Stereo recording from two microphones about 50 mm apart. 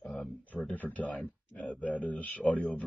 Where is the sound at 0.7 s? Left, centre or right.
Left.